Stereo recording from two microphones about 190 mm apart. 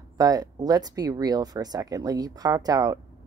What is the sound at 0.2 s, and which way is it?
Speech, 20° right (ahead or behind).